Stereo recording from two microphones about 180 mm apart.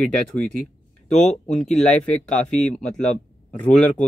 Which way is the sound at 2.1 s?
5° left (ahead or behind).